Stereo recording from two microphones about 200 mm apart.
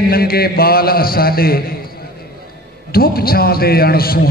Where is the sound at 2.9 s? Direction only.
50° left (ahead or behind).